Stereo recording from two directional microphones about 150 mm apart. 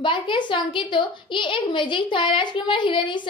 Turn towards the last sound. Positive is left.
turn(degrees=35)  # may be behind; listen again after turning